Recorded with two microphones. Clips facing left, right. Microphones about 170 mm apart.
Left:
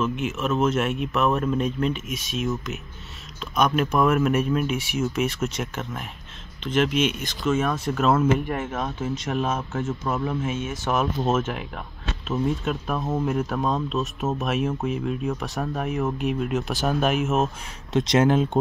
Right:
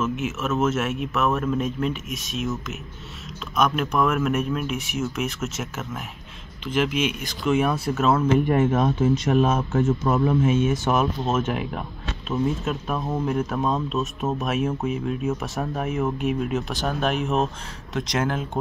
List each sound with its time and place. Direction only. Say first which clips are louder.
0.0 s speech: even; centre (ahead or behind)
9.4 s speech: right 5 dB; 40° right (ahead or behind)
10.7 s speech: right 3 dB; centre (ahead or behind)
17.9 s speech: left 6 dB; 25° left (ahead or behind)